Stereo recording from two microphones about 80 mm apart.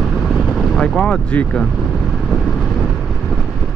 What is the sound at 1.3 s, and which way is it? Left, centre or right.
Speech, centre.